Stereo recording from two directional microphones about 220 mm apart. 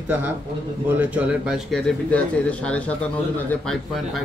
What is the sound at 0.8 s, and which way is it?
Speech, 5° right (ahead or behind).